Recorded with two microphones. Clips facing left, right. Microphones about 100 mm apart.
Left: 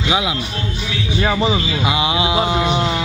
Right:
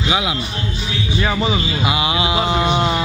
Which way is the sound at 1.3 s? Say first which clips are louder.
Left 2 dB; 25° left (ahead or behind).